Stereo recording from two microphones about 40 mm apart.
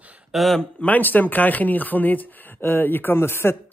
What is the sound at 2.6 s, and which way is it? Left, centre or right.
Speech, left.